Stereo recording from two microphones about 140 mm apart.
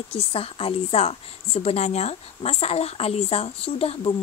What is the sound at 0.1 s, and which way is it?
A woman's voice, 45° left (ahead or behind).